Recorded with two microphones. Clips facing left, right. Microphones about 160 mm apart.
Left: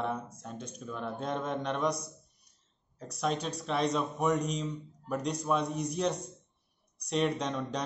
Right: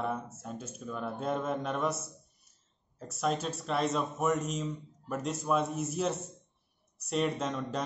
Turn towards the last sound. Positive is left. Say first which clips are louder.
# even
turn(degrees=-5)  # may be behind; listen again after turning